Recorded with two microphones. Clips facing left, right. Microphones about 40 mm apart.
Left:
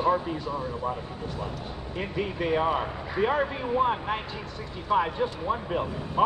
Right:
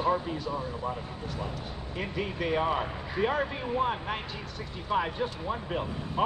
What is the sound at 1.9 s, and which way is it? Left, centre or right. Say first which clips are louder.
Speech: left 3 dB; centre.